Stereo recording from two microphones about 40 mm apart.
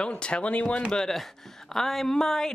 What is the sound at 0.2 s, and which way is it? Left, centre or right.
Speech, left.